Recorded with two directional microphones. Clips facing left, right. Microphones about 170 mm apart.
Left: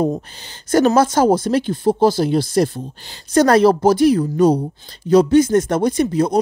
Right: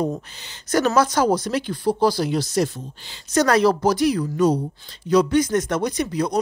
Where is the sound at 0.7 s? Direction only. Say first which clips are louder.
Left 5 dB; 30° left (ahead or behind).